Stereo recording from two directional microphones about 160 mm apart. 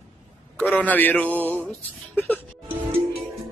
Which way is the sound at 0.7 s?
10° left (ahead or behind).